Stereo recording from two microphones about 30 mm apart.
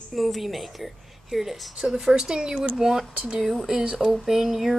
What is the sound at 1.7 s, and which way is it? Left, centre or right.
Speech, centre.